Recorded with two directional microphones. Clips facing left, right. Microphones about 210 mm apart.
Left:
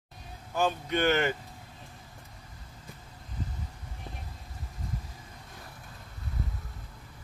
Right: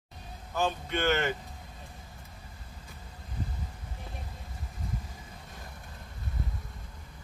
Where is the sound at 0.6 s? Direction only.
15° left (ahead or behind).